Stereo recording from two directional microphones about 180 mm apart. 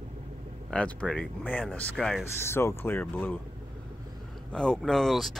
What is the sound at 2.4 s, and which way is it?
Speech, 15° left (ahead or behind).